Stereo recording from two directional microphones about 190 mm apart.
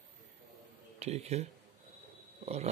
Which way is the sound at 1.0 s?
35° right (ahead or behind).